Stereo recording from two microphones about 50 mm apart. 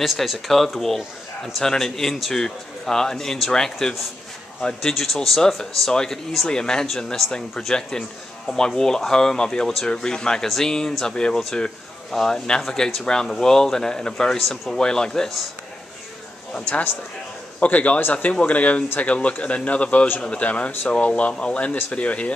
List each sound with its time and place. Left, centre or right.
0.0 s speech: centre
14.4 s speech: centre
14.7 s speech: centre
16.5 s a man's voice: left